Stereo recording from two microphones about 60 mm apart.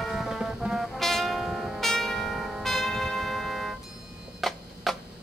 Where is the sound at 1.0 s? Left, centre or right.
Centre.